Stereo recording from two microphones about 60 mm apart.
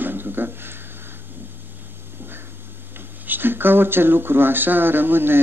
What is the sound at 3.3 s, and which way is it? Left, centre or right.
Speech, right.